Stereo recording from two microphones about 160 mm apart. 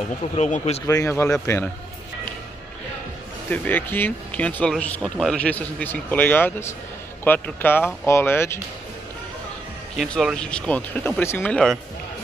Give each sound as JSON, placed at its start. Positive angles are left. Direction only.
{"t": 0.4, "sound": "speech", "side_deg": 45}
{"t": 0.8, "sound": "speech", "side_deg": 15}
{"t": 3.4, "sound": "speech", "side_deg": 10}
{"t": 9.9, "sound": "speech", "side_deg": 5}